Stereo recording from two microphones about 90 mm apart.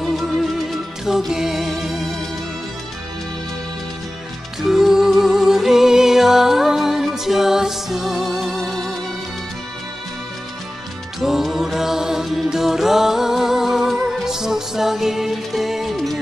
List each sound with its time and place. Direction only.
0.0 s music: centre (ahead or behind)
4.6 s music: 5° right (ahead or behind)
11.1 s music: centre (ahead or behind)